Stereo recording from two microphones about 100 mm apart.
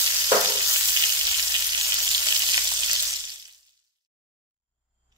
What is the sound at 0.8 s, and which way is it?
Frying, 40° right (ahead or behind).